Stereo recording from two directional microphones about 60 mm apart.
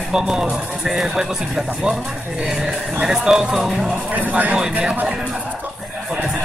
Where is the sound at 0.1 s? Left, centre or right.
Centre.